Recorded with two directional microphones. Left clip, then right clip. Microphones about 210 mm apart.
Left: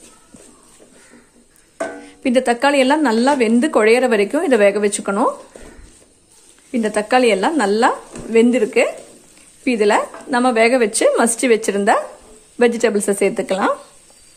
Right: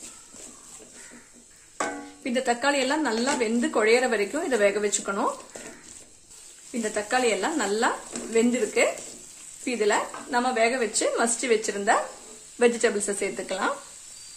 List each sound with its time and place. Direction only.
2.2 s a woman's voice: 45° left (ahead or behind)
6.8 s a woman's voice: 45° left (ahead or behind)